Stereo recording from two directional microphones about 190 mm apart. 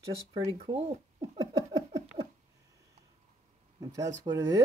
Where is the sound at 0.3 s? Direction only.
30° right (ahead or behind).